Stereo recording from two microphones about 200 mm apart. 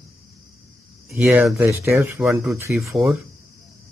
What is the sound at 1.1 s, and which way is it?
Speech, 10° right (ahead or behind).